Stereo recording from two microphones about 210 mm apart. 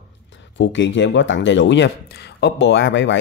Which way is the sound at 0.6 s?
60° left (ahead or behind).